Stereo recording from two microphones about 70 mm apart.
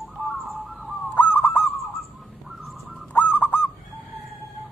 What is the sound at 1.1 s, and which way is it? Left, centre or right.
Goose, left.